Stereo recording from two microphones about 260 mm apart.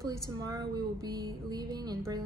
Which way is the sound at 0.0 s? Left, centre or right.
Centre.